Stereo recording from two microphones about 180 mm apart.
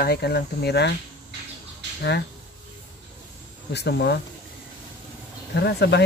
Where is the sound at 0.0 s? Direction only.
60° left (ahead or behind).